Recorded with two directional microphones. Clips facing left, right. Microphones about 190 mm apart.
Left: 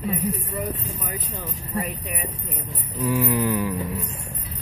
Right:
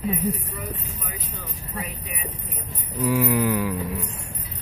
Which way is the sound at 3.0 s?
10° right (ahead or behind).